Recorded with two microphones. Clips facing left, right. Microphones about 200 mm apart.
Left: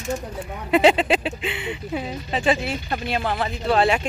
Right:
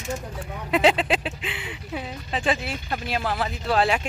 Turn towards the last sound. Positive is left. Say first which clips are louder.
# left 3 dB
turn(degrees=0)  # may be behind; listen again after turning